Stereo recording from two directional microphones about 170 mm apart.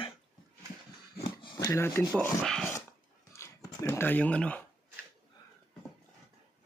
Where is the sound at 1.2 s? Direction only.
30° left (ahead or behind).